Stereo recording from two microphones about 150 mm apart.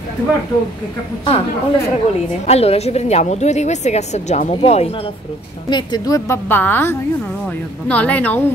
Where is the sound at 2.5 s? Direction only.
45° left (ahead or behind).